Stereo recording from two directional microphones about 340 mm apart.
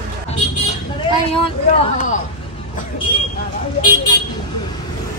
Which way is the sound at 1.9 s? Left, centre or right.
Left.